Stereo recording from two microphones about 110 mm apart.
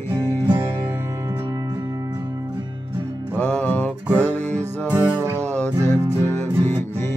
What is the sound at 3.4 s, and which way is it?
Music, 15° left (ahead or behind).